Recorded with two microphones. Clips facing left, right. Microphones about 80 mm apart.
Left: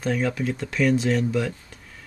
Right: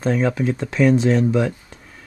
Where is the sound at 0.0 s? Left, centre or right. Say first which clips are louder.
Right 5 dB; right.